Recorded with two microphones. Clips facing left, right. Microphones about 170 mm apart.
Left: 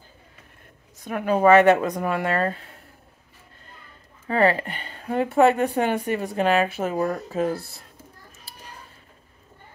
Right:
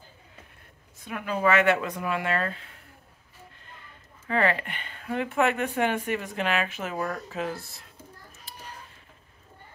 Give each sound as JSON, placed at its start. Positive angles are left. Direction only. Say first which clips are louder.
{"t": 1.0, "sound": "speech", "louder": "left 8 dB", "side_deg": 45}
{"t": 4.3, "sound": "speech", "louder": "left 5 dB", "side_deg": 35}